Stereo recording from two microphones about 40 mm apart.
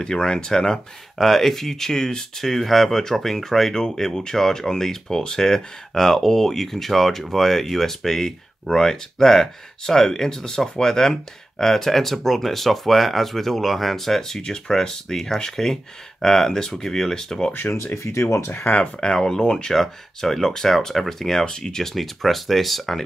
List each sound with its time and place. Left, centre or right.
0.0 s speech: left
1.1 s speech: centre
18.5 s speech: left
18.8 s speech: centre
19.7 s speech: centre